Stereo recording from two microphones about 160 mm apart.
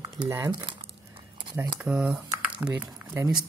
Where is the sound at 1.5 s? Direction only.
5° right (ahead or behind).